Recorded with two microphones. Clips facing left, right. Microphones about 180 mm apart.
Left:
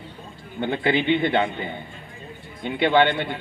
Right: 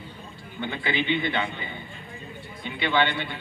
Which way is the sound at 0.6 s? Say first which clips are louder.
Left 6 dB; 55° left (ahead or behind).